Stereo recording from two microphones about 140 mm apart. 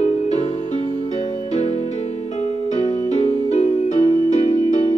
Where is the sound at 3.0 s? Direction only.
60° left (ahead or behind).